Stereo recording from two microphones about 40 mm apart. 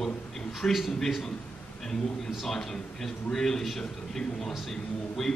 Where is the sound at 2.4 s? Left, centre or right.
Centre.